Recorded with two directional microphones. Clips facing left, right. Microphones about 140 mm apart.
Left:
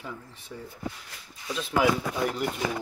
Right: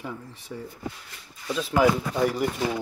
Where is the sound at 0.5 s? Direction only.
Centre (ahead or behind).